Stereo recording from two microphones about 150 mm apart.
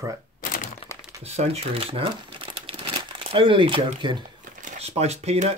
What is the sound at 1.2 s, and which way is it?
Crumpling, 45° right (ahead or behind).